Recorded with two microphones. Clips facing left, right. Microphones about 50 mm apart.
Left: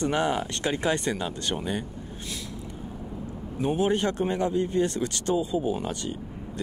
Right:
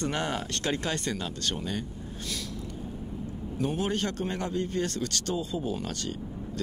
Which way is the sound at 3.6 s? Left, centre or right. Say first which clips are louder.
Left 5 dB; centre.